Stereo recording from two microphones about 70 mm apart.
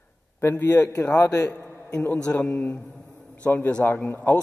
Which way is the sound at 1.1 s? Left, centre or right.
Left.